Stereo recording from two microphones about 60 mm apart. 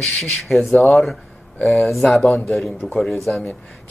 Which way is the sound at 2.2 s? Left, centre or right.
Left.